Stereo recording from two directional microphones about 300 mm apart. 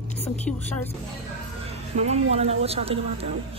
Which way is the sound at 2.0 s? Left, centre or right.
Right.